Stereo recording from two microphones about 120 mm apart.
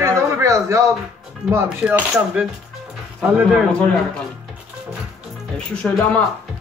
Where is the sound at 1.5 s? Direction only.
15° right (ahead or behind).